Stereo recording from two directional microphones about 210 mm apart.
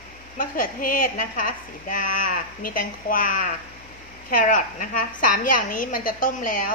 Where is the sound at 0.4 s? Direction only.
40° left (ahead or behind).